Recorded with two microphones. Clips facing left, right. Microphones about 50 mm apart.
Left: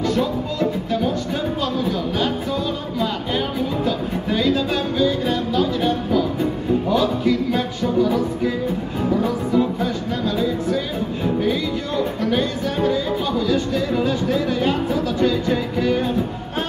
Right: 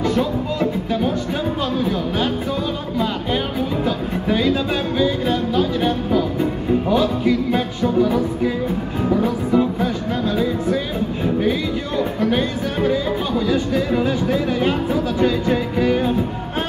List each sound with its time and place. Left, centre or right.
0.1 s music: centre
3.8 s music: centre
12.3 s music: centre
13.5 s speech: centre